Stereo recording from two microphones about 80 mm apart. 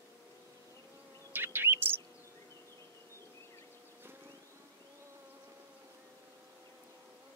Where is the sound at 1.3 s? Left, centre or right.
Right.